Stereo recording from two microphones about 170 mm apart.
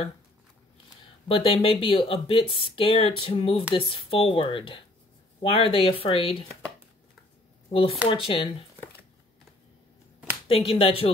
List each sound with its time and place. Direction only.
1.3 s speech: 35° left (ahead or behind)
8.1 s speech: 30° left (ahead or behind)
10.5 s speech: 30° left (ahead or behind)